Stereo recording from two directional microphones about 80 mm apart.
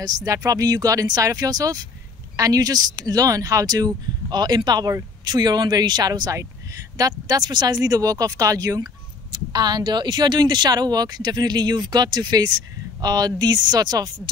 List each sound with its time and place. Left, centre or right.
0.0 s speech: right